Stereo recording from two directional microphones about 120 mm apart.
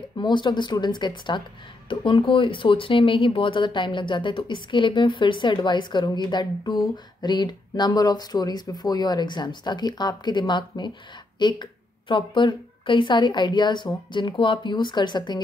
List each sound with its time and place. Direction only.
0.2 s a woman's voice: 40° left (ahead or behind)